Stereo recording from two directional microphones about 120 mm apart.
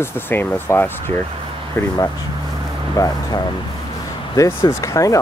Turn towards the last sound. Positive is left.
turn(degrees=25)  # may be behind; listen again after turning